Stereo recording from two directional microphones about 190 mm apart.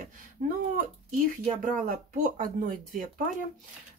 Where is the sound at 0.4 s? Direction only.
50° right (ahead or behind).